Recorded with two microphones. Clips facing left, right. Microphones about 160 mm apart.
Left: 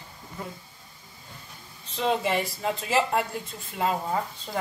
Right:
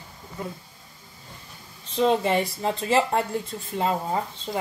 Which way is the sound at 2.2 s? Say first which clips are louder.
Right 3 dB; 35° right (ahead or behind).